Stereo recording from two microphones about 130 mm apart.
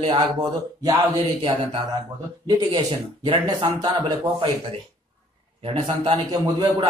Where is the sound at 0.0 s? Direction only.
45° right (ahead or behind).